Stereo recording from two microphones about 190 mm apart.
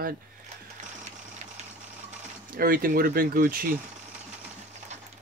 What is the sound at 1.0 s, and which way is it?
Engine, 40° right (ahead or behind).